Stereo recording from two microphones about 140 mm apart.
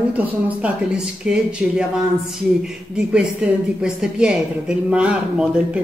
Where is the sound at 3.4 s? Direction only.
5° right (ahead or behind).